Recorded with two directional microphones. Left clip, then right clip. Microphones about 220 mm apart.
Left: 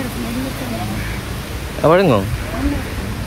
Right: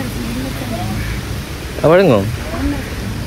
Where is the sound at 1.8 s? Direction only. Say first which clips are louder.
Right 2 dB; 15° left (ahead or behind).